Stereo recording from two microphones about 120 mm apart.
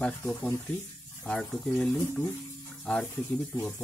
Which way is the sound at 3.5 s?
20° left (ahead or behind).